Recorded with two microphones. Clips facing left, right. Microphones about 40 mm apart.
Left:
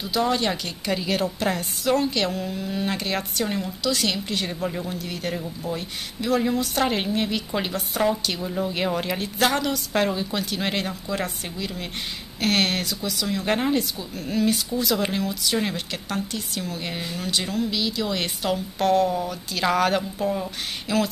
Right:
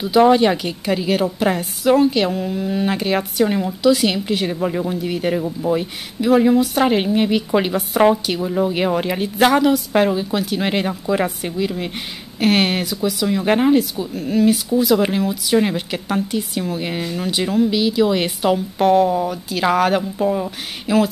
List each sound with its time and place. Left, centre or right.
0.3 s speech: centre
6.2 s speech: centre